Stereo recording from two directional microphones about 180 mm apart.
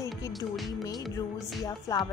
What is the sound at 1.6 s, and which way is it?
Speech, 20° left (ahead or behind).